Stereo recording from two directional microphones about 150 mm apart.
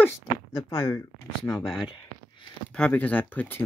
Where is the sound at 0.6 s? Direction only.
25° left (ahead or behind).